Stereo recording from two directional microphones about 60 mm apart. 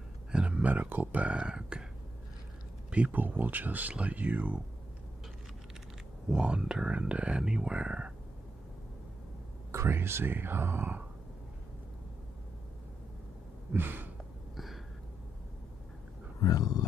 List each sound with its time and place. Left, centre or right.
0.3 s a sound: right
1.2 s speech: centre
2.9 s speech: right
6.3 s speech: centre
9.7 s speech: right
13.7 s speech: right
16.3 s speech: left